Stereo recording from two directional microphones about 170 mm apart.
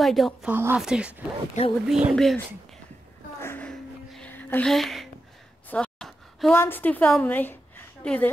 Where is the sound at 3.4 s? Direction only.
10° left (ahead or behind).